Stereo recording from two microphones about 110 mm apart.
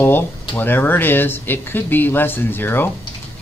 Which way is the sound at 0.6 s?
20° left (ahead or behind).